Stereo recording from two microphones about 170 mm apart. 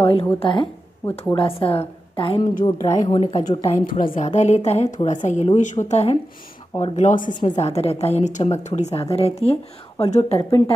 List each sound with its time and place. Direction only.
0.0 s a woman's voice: 35° left (ahead or behind)
2.6 s a woman's voice: 20° left (ahead or behind)
3.6 s speech: 20° left (ahead or behind)
3.9 s a woman's voice: 50° left (ahead or behind)